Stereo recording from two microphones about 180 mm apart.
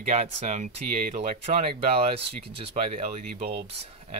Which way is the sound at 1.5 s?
35° right (ahead or behind).